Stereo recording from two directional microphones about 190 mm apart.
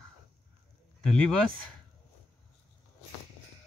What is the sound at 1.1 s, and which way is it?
Speech, 5° left (ahead or behind).